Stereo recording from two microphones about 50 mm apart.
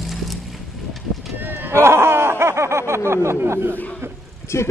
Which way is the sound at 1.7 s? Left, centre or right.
Right.